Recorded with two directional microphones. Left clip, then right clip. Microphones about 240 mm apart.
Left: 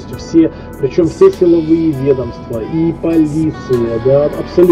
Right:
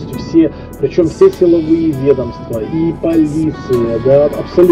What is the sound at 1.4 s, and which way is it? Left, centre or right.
Speech, centre.